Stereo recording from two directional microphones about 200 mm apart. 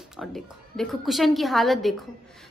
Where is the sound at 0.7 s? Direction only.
Centre (ahead or behind).